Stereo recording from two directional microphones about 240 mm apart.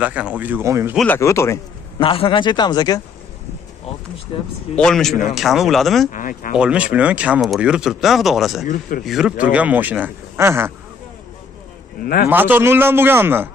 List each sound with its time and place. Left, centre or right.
0.0 s speech: centre
0.9 s a man's voice: centre
4.3 s speech: left
4.7 s speech: centre
6.1 s speech: left
6.5 s speech: centre
12.0 s speech: left
12.3 s speech: centre